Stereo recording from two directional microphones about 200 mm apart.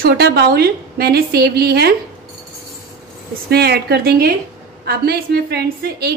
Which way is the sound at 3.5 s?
55° right (ahead or behind).